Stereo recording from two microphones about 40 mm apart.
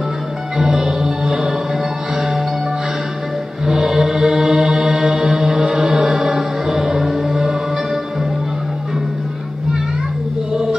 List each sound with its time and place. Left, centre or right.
0.6 s music: centre
3.6 s mantra: centre
10.5 s music: centre